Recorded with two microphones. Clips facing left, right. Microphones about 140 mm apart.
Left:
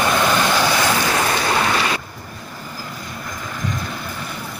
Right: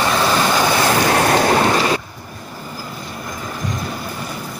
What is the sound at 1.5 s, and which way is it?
Waves, 35° right (ahead or behind).